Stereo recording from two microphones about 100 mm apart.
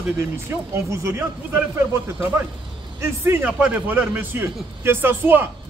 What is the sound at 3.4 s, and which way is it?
Speech, 15° right (ahead or behind).